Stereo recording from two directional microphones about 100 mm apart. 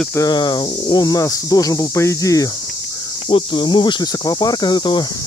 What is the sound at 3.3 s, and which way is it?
Speech, 55° left (ahead or behind).